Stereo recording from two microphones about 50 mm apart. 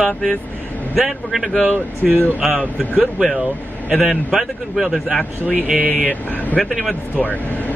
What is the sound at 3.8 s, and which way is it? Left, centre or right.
Speech, right.